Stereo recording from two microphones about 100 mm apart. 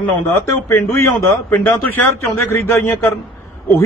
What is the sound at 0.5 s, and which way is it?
A man's voice, 25° left (ahead or behind).